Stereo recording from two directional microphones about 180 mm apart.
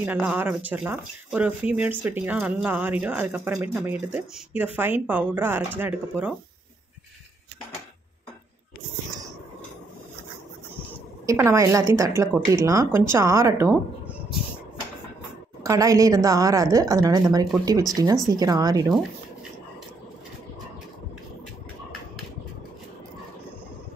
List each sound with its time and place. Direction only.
0.0 s speech: 10° right (ahead or behind)
11.2 s speech: 15° right (ahead or behind)
15.6 s a woman's voice: 20° right (ahead or behind)